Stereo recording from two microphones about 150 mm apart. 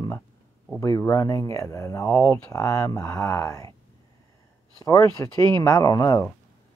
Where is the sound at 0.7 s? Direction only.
20° left (ahead or behind).